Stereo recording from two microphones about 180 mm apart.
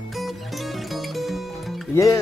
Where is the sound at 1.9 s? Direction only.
15° left (ahead or behind).